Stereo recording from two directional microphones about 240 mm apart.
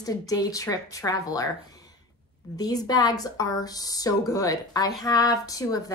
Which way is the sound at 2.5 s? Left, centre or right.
Centre.